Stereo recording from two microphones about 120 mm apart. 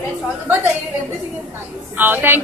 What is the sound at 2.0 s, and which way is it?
Speech, 15° right (ahead or behind).